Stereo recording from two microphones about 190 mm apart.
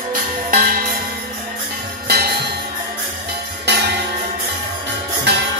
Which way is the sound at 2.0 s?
55° right (ahead or behind).